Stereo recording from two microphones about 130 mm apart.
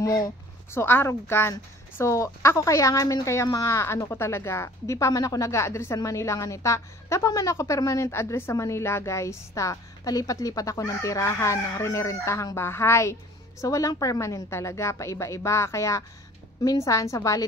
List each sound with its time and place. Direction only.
0.0 s a woman's voice: 25° left (ahead or behind)